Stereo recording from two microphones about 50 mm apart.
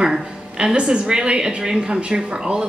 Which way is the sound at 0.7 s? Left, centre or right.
Centre.